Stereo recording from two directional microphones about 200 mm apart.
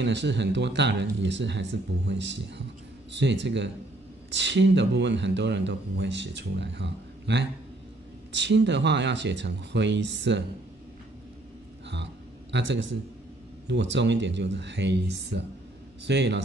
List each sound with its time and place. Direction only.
0.0 s speech: 60° right (ahead or behind)
11.9 s a sound: 60° right (ahead or behind)
13.7 s speech: 60° right (ahead or behind)